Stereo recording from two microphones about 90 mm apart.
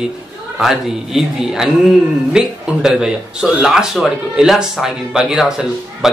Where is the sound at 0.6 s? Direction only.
5° right (ahead or behind).